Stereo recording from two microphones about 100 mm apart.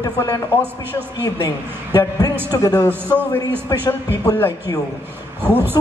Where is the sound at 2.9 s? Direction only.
20° right (ahead or behind).